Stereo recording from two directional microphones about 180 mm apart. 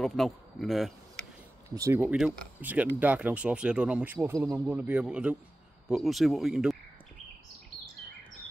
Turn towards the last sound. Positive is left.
turn(degrees=-5)  # may be behind; listen again after turning